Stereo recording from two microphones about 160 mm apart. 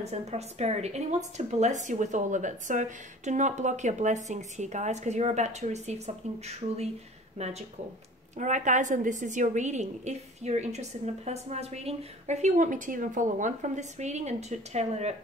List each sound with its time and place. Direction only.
0.0 s a woman's voice: 45° right (ahead or behind)